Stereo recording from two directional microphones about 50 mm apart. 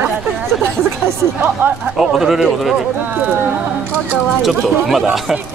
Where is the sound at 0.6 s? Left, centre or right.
Right.